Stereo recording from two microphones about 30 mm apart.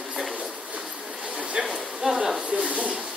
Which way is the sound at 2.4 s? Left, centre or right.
Right.